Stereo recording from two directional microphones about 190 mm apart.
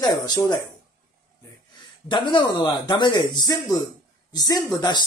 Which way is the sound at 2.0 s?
25° left (ahead or behind).